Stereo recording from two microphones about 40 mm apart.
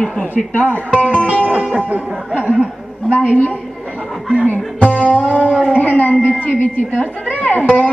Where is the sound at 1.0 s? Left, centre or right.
Right.